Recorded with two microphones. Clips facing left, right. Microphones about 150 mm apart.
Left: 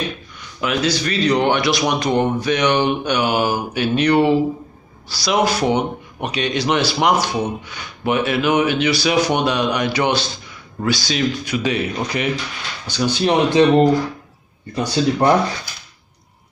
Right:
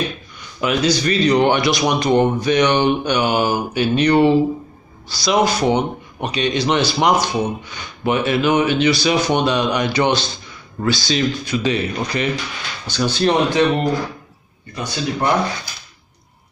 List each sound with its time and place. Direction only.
0.6 s a man's voice: centre (ahead or behind)
13.5 s speech: 25° left (ahead or behind)